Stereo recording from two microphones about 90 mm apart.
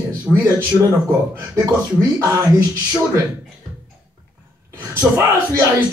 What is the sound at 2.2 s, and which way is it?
Speech, 35° right (ahead or behind).